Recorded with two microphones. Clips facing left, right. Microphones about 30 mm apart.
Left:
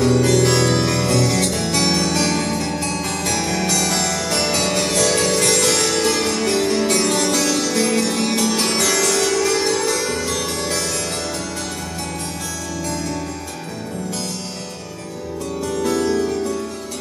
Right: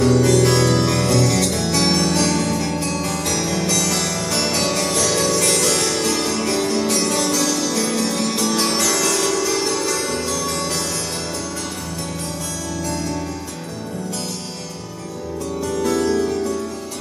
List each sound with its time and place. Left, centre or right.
0.0 s music: centre
2.2 s music: centre
8.7 s music: left
9.0 s music: centre
9.3 s music: left